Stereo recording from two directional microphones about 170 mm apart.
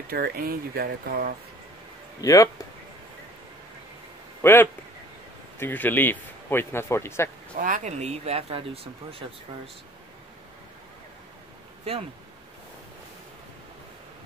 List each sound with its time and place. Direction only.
0.1 s speech: 60° right (ahead or behind)
2.2 s speech: 20° left (ahead or behind)
4.4 s speech: 15° left (ahead or behind)
7.5 s speech: 50° right (ahead or behind); by 9.2 s 35° right (ahead or behind)